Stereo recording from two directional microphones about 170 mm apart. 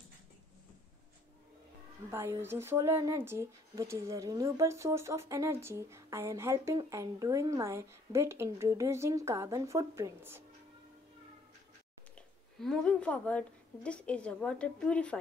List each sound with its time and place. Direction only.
2.0 s speech: 15° right (ahead or behind)
12.2 s a woman's voice: 5° left (ahead or behind)